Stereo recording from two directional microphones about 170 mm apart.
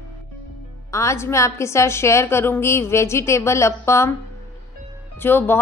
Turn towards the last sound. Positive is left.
turn(degrees=15)  # may be behind; listen again after turning